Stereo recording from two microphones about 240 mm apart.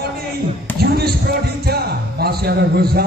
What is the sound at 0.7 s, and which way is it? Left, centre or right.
Basketball bounce, right.